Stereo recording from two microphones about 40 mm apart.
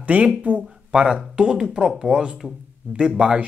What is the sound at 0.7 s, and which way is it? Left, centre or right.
A man's voice, centre.